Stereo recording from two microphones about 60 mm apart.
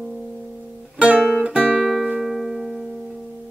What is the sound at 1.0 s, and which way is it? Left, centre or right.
Music, centre.